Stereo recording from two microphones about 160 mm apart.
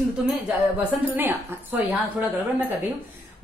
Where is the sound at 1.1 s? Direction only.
10° right (ahead or behind).